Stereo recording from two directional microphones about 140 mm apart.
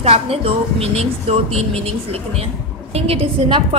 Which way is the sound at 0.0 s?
45° right (ahead or behind).